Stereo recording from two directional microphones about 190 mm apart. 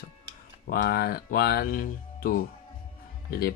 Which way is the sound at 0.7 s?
55° left (ahead or behind).